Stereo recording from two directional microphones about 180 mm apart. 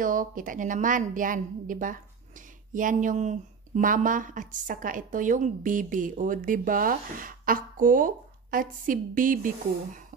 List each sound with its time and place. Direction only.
0.0 s a woman's voice: 50° right (ahead or behind)